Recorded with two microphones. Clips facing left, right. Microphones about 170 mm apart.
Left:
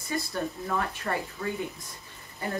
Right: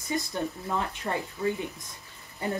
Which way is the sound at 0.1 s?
20° right (ahead or behind).